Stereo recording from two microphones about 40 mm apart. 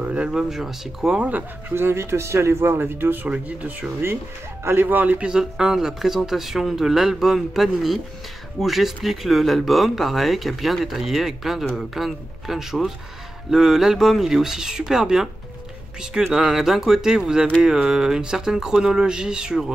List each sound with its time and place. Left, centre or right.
0.0 s a sound: right
0.3 s speech: centre
1.7 s speech: right
3.3 s speech: right
4.8 s a man's voice: right
5.4 s speech: centre; by 17.8 s right
17.8 s speech: centre